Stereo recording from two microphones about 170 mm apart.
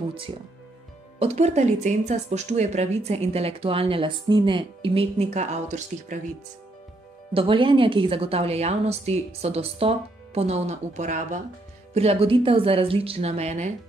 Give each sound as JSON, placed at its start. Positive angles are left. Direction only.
{"t": 1.2, "sound": "speech", "side_deg": -40}
{"t": 7.3, "sound": "speech", "side_deg": -30}